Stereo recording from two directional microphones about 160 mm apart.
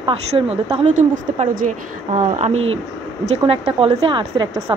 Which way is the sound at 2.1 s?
45° right (ahead or behind).